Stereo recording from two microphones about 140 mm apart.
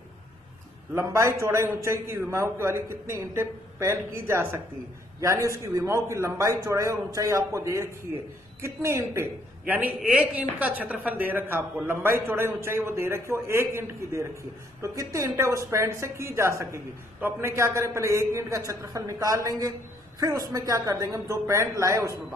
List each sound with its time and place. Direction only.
0.9 s a woman's voice: 20° right (ahead or behind)